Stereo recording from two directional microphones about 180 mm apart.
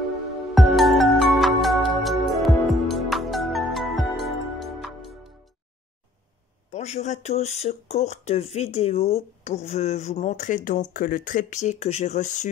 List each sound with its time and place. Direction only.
0.6 s music: centre (ahead or behind)
6.7 s speech: 40° left (ahead or behind)